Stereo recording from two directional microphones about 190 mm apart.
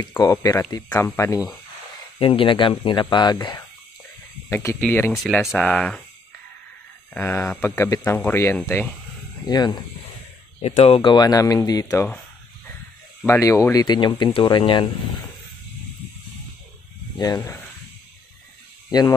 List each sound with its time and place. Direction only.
0.0 s speech: 20° left (ahead or behind)
2.1 s speech: 30° left (ahead or behind)
4.5 s speech: 10° left (ahead or behind)
5.1 s speech: centre (ahead or behind)
7.2 s speech: 10° left (ahead or behind)
9.5 s speech: 20° left (ahead or behind)
10.6 s speech: 30° left (ahead or behind); by 12.2 s 15° left (ahead or behind)
13.3 s speech: 15° left (ahead or behind)
17.2 s speech: 20° left (ahead or behind)
18.9 s speech: 20° left (ahead or behind)